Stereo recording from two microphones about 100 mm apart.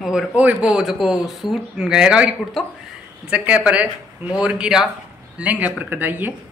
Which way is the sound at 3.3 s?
10° right (ahead or behind).